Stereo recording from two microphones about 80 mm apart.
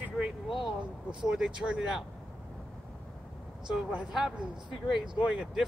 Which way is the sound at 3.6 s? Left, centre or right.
Centre.